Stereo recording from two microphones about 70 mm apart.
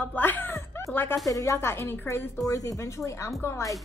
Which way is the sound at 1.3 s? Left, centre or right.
Left.